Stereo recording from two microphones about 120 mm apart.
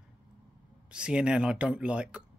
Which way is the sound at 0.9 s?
10° right (ahead or behind).